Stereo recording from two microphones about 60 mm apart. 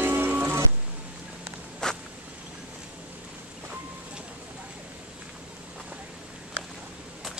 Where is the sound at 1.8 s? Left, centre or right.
Centre.